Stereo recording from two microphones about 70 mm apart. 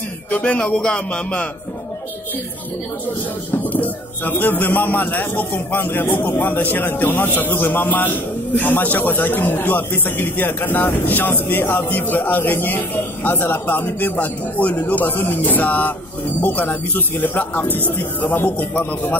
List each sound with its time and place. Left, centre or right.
0.3 s speech: centre
3.6 s a man's voice: left